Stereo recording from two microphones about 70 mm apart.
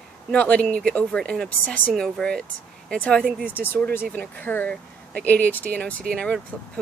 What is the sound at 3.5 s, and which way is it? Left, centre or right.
Speech, left.